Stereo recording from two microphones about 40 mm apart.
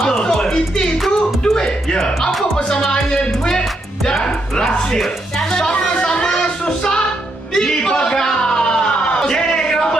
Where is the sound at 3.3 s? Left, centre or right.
Centre.